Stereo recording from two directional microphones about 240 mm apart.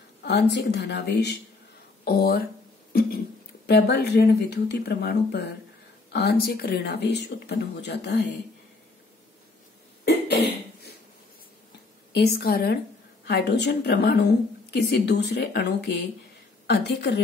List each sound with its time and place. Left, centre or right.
0.2 s a woman's voice: left
2.9 s a sound: left
3.6 s speech: left
10.0 s cough: left
12.1 s a woman's voice: left